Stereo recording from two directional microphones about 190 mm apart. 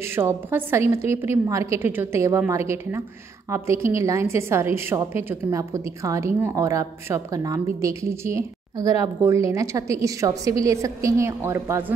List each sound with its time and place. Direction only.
0.1 s a woman's voice: 10° right (ahead or behind)